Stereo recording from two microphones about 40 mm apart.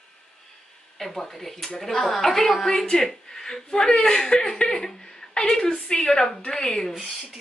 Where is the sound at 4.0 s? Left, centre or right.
Centre.